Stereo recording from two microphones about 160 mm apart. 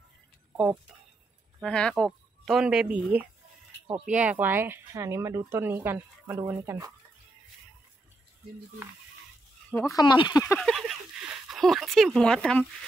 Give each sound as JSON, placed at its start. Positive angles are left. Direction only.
{"t": 1.6, "sound": "speech", "side_deg": 5}
{"t": 9.8, "sound": "speech", "side_deg": 25}
{"t": 10.6, "sound": "speech", "side_deg": 0}